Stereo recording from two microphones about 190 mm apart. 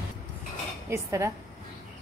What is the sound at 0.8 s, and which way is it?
Speech, 15° right (ahead or behind).